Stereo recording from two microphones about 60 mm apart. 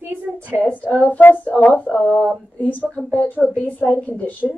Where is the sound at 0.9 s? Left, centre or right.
Left.